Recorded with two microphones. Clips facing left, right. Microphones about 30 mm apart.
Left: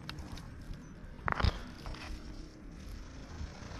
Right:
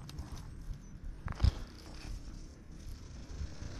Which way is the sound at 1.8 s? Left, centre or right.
Left.